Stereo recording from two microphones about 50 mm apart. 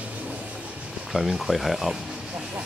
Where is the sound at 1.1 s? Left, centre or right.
Centre.